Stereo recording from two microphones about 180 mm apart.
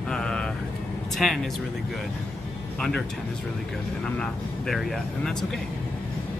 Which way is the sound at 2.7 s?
Centre (ahead or behind).